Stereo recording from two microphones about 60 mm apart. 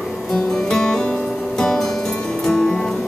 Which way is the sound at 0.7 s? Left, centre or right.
Centre.